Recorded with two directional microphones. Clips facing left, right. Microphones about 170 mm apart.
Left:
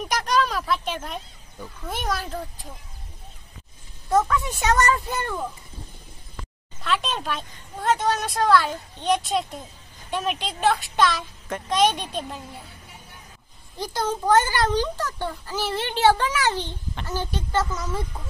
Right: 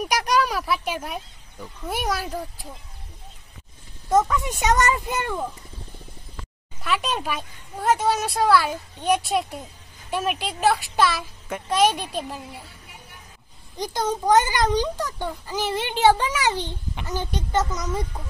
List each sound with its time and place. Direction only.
0.0 s speech: 10° right (ahead or behind)
4.7 s a child's voice: 15° right (ahead or behind)
6.8 s a child's voice: 10° right (ahead or behind)
13.7 s a child's voice: 15° right (ahead or behind)